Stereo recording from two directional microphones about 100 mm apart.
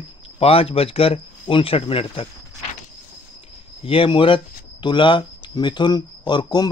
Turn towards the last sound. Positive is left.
turn(degrees=50)  # may be behind; listen again after turning